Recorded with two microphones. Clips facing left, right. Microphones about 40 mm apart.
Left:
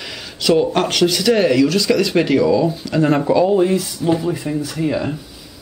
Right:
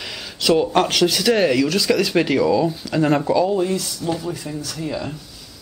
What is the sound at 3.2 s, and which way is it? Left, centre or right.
Speech, centre.